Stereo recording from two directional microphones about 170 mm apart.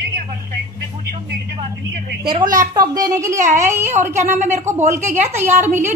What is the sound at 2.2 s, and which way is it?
A woman's voice, 25° right (ahead or behind).